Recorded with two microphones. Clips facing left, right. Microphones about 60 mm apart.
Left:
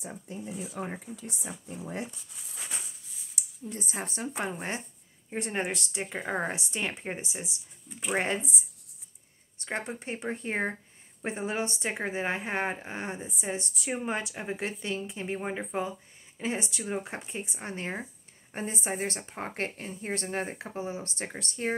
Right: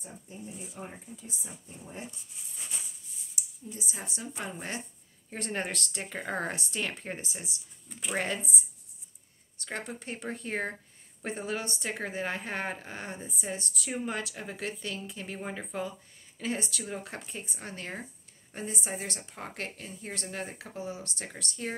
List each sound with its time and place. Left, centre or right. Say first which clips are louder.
0.0 s speech: left 5 dB; left
3.4 s a sound: left 1 dB; left
3.7 s speech: left 5 dB; left
5.3 s speech: left 3 dB; centre
9.6 s a woman's voice: left 3 dB; left